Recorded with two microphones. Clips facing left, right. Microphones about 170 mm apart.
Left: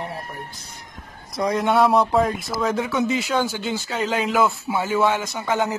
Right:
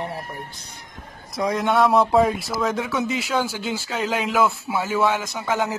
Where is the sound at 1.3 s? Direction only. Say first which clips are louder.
Left 1 dB; centre (ahead or behind).